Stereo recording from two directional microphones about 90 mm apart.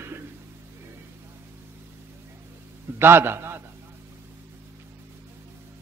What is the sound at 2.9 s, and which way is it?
Speech, 25° right (ahead or behind).